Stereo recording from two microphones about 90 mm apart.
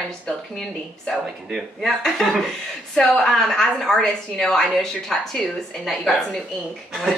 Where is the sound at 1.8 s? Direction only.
5° left (ahead or behind).